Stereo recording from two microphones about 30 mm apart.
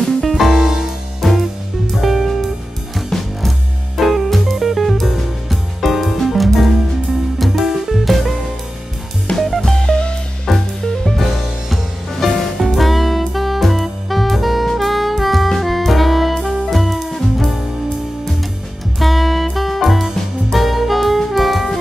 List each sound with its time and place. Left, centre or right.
0.2 s music: centre
0.6 s music: centre
2.0 s music: centre
3.4 s music: centre
9.3 s music: left
10.5 s music: centre
14.8 s saxophone: centre
15.6 s music: centre
18.9 s music: centre